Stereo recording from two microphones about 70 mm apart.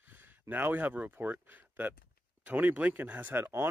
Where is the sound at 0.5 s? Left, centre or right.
Right.